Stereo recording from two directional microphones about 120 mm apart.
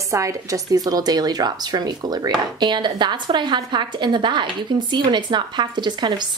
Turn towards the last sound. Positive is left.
turn(degrees=-40)  # may be behind; listen again after turning